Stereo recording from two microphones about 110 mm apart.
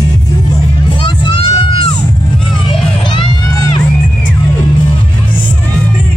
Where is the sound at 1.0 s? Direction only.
50° left (ahead or behind).